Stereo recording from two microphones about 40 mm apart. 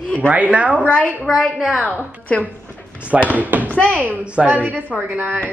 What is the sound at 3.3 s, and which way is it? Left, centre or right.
Speech, right.